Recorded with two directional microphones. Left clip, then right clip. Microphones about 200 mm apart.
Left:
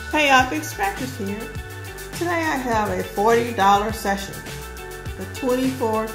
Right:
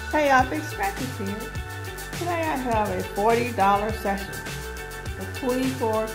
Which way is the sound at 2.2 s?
25° right (ahead or behind).